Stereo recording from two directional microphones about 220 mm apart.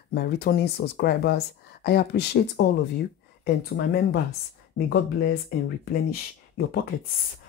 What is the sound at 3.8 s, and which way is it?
Speech, 50° left (ahead or behind).